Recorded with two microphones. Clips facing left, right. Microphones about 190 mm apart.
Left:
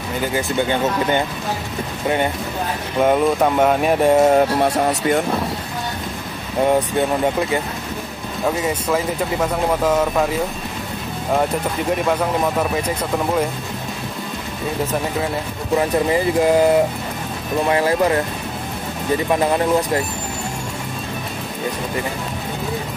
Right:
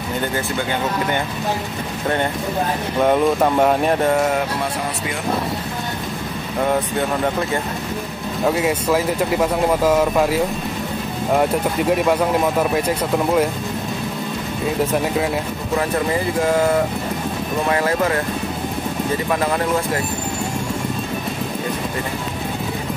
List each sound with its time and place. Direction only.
3.0 s speech: centre (ahead or behind)
4.0 s speech: 20° left (ahead or behind)
4.6 s speech: 40° left (ahead or behind)
8.5 s speech: 5° right (ahead or behind)
12.1 s speech: 5° right (ahead or behind)
17.6 s speech: 20° left (ahead or behind)